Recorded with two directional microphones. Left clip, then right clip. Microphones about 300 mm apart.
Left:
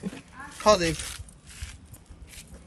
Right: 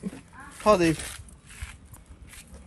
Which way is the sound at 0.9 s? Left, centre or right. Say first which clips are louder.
Even; centre.